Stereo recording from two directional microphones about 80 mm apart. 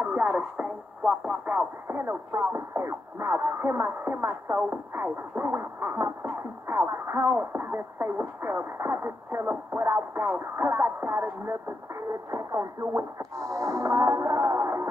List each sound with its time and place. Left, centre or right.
0.0 s speech: centre
1.4 s music: right
2.0 s speech: right